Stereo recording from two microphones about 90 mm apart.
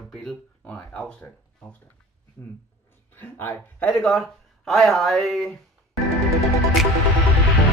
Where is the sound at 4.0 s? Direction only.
Centre (ahead or behind).